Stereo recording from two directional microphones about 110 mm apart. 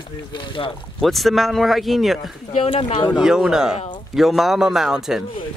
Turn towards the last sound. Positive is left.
turn(degrees=-5)  # may be behind; listen again after turning